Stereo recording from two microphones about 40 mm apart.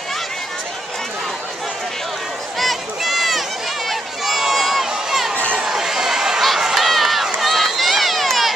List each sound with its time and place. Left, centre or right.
2.6 s run: centre
3.9 s a sound: centre
5.6 s crowd: centre
6.6 s run: centre